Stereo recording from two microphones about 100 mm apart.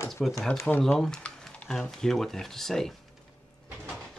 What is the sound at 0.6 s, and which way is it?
Speech, 15° left (ahead or behind).